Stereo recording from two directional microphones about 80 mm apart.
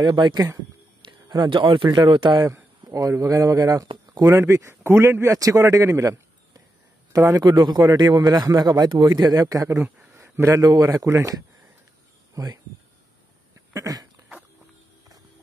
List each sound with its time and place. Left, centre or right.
0.0 s speech: right
2.8 s speech: right
4.2 s speech: right
5.3 s a man's voice: right
10.1 s a sound: right
10.6 s speech: right
12.4 s speech: right
13.7 s speech: right